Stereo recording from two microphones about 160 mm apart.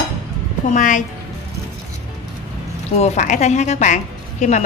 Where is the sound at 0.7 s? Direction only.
50° left (ahead or behind).